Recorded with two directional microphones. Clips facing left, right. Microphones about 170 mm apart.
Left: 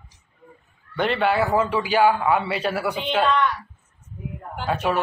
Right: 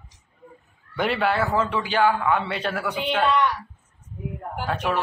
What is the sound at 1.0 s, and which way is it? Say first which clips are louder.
Speech: left 2 dB; 5° right (ahead or behind).